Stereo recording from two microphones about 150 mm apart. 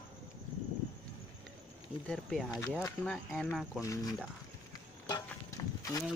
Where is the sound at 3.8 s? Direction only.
25° left (ahead or behind).